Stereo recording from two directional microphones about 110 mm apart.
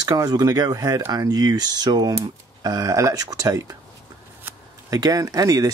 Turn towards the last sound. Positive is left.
turn(degrees=-35)  # may be behind; listen again after turning